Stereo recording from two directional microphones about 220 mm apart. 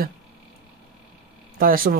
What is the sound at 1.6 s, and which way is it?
Speech, 40° right (ahead or behind).